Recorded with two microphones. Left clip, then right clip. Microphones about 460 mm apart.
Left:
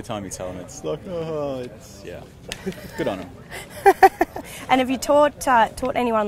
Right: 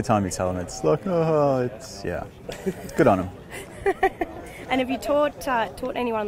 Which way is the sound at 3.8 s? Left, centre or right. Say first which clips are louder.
Left 9 dB; left.